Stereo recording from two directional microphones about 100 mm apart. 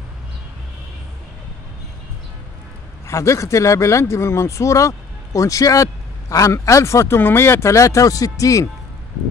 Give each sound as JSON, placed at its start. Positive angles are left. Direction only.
{"t": 3.1, "sound": "speech", "side_deg": 30}